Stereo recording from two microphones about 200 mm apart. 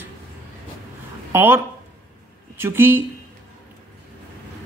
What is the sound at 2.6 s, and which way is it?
Speech, 10° right (ahead or behind).